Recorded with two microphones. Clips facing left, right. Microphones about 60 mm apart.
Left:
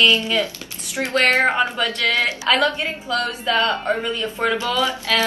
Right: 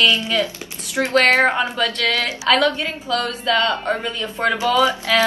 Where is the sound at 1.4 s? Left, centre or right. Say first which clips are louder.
Even; centre.